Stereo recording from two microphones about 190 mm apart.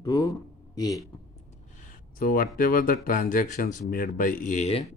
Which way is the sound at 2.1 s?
50° left (ahead or behind).